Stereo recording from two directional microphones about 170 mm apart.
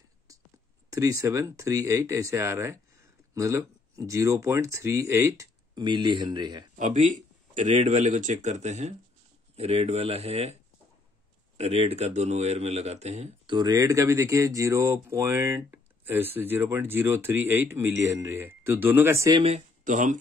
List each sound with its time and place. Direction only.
0.8 s speech: 20° right (ahead or behind)
6.8 s speech: 45° right (ahead or behind)
13.5 s speech: 25° right (ahead or behind)
19.4 s speech: 45° right (ahead or behind)